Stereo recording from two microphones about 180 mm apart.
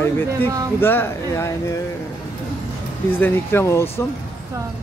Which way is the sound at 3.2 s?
15° left (ahead or behind).